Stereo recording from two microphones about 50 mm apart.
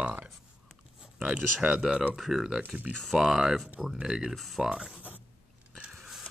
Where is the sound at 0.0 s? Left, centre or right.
Right.